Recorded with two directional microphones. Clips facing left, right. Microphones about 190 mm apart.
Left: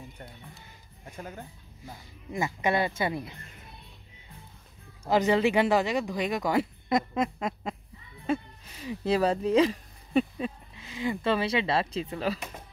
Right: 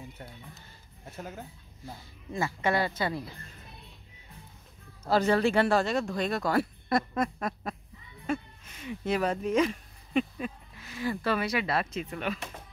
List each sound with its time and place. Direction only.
1.0 s speech: 5° right (ahead or behind)
2.3 s speech: 20° left (ahead or behind)
5.0 s speech: 15° left (ahead or behind)
8.3 s speech: 35° left (ahead or behind)
10.8 s speech: 20° left (ahead or behind)